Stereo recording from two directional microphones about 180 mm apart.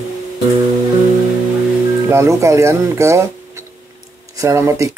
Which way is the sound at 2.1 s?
15° right (ahead or behind).